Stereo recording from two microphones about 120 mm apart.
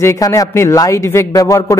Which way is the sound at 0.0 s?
25° left (ahead or behind).